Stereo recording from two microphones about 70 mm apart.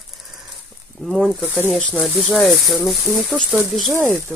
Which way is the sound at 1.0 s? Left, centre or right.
Centre.